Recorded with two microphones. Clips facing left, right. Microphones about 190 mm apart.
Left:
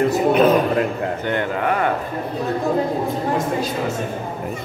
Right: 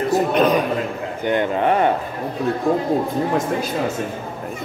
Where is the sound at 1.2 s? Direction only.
20° right (ahead or behind).